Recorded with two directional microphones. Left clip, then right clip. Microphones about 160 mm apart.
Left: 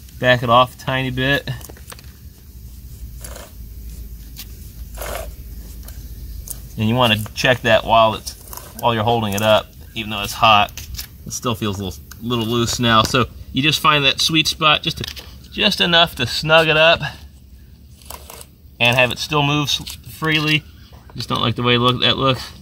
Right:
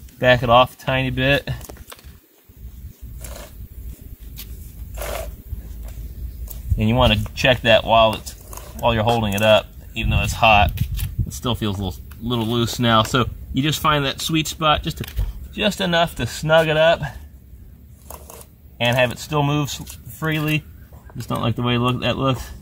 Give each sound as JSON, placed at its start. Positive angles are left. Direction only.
{"t": 0.2, "sound": "speech", "side_deg": -20}
{"t": 0.8, "sound": "keys jangling", "side_deg": -15}
{"t": 4.9, "sound": "a sound", "side_deg": -10}
{"t": 6.8, "sound": "speech", "side_deg": -15}
{"t": 18.0, "sound": "a sound", "side_deg": -10}
{"t": 21.1, "sound": "speech", "side_deg": -10}